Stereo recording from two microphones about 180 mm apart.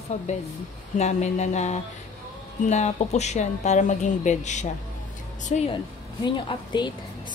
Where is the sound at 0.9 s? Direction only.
40° left (ahead or behind).